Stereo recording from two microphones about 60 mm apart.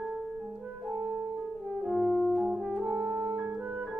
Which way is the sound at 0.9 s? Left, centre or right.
Right.